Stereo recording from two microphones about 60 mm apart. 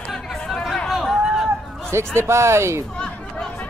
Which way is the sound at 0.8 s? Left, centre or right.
Centre.